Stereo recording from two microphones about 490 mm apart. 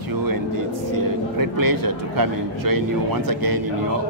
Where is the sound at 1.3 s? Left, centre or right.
Right.